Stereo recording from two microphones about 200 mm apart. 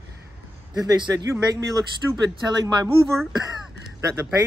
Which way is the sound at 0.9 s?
20° right (ahead or behind).